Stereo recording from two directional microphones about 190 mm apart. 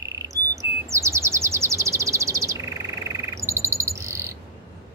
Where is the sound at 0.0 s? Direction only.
15° right (ahead or behind).